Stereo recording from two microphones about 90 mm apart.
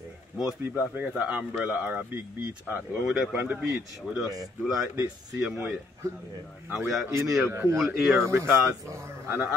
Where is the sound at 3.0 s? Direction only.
5° right (ahead or behind).